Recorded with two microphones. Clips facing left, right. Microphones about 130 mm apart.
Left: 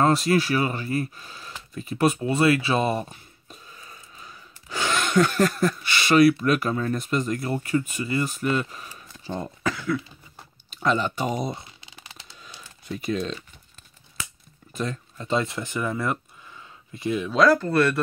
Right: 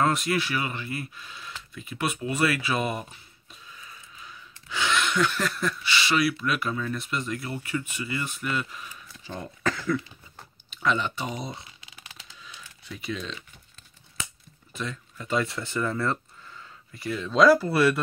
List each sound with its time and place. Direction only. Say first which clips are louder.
0.0 s speech: left 5 dB; 35° left (ahead or behind)
9.6 s cough: right 1 dB; 5° left (ahead or behind)
10.7 s speech: left 3 dB; 40° left (ahead or behind)
11.8 s a sound: left 2 dB; 30° left (ahead or behind)
12.4 s typing: left 7 dB; 40° left (ahead or behind)
14.7 s a sound: left 5 dB; 40° left (ahead or behind)
15.2 s speech: left 2 dB; 25° left (ahead or behind)
17.3 s speech: right 1 dB; centre (ahead or behind)